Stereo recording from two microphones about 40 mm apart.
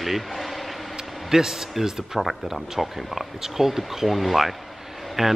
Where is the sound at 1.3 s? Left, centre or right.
Centre.